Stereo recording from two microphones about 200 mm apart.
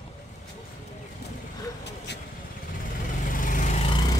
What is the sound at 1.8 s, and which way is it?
Vehicle, 60° left (ahead or behind).